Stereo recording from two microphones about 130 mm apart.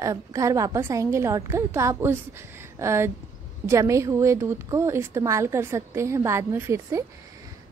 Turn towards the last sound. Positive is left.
turn(degrees=-20)  # may be behind; listen again after turning